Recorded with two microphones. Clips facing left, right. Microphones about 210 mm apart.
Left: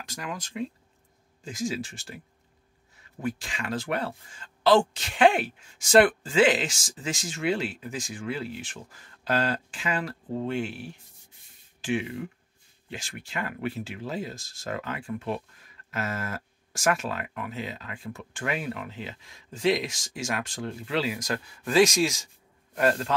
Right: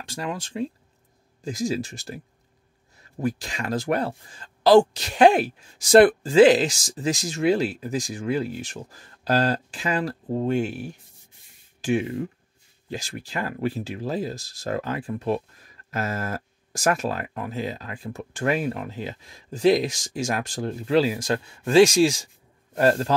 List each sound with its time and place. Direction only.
0.0 s speech: 30° right (ahead or behind)